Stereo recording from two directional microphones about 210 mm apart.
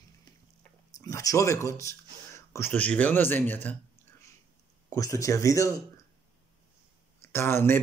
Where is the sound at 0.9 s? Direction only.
15° left (ahead or behind).